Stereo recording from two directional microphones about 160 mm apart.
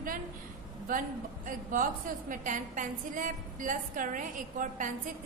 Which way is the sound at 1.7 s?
55° right (ahead or behind).